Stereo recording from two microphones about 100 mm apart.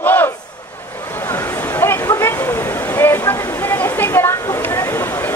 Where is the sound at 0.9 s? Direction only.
20° left (ahead or behind).